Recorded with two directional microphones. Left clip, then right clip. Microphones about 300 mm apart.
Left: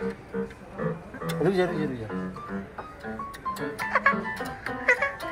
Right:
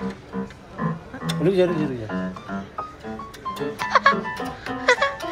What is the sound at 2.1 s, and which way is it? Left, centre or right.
Music, right.